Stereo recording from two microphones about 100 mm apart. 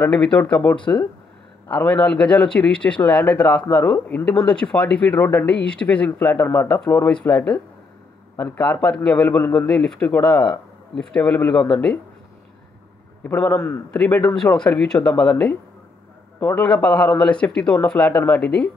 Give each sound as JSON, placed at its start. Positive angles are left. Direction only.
{"t": 0.0, "sound": "speech", "side_deg": 10}
{"t": 7.1, "sound": "speech", "side_deg": 10}
{"t": 13.2, "sound": "a man's voice", "side_deg": 20}
{"t": 13.8, "sound": "speech", "side_deg": 10}